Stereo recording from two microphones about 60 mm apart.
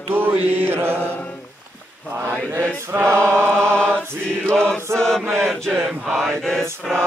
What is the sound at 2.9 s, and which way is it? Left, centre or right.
Chant, right.